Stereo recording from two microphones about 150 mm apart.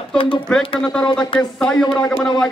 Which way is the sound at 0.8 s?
5° left (ahead or behind).